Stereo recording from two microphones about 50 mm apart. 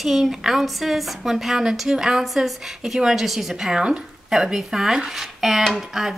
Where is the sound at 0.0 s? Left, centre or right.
Centre.